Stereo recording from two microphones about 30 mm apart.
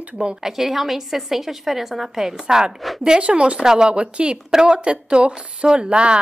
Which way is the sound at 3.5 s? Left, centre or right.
Right.